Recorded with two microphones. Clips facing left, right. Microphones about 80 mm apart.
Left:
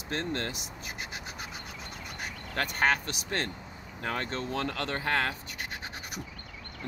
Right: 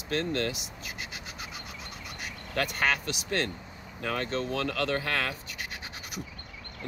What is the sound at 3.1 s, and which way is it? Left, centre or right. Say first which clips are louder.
Speech: right 3 dB; left.